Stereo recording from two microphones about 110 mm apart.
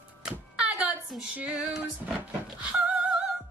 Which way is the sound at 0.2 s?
5° right (ahead or behind).